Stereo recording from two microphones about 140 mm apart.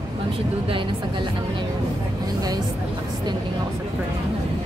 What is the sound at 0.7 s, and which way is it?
Speech, 35° right (ahead or behind).